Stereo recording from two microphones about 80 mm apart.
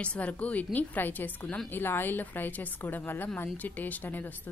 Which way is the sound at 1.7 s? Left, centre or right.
Left.